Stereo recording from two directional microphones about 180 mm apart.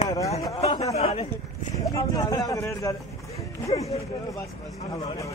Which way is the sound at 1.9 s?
20° left (ahead or behind).